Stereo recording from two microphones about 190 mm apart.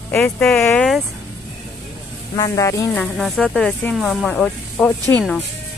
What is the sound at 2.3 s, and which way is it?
Speech, 20° left (ahead or behind).